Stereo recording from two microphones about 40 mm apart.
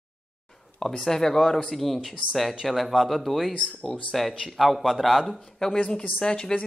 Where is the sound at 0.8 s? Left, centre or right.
Centre.